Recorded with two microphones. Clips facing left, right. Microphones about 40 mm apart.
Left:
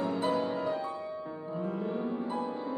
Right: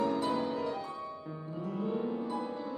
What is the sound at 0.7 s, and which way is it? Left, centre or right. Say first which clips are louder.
Music: left 4 dB; left.